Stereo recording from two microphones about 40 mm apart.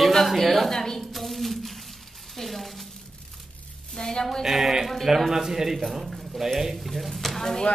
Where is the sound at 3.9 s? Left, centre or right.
Centre.